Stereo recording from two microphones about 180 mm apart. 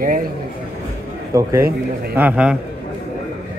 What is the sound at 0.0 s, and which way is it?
Speech, 50° right (ahead or behind).